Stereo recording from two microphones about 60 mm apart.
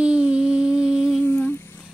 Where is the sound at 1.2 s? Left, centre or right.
Left.